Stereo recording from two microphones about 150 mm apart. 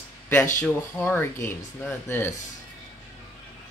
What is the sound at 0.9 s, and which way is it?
Speech, 10° left (ahead or behind).